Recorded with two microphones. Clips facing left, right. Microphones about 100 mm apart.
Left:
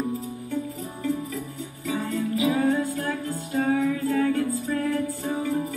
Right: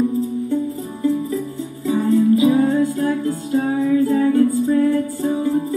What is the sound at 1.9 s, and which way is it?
Music, 30° right (ahead or behind).